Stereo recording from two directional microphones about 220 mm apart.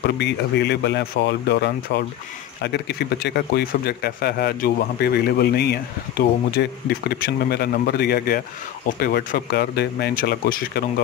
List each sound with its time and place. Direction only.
0.2 s a man's voice: 50° left (ahead or behind)